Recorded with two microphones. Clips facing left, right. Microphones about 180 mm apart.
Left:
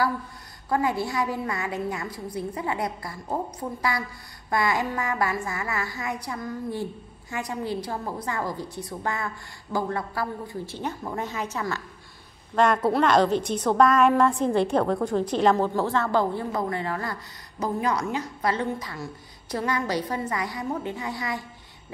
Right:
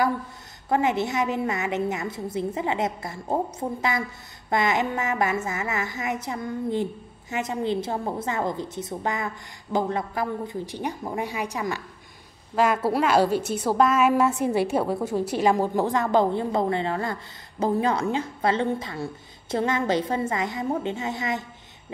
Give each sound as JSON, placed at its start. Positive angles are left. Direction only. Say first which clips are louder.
{"t": 0.7, "sound": "a woman's voice", "louder": "right 2 dB", "side_deg": -20}